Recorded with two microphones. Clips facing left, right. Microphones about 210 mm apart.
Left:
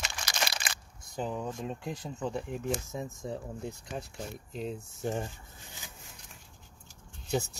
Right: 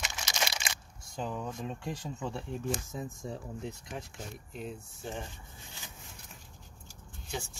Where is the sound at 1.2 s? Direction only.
15° left (ahead or behind).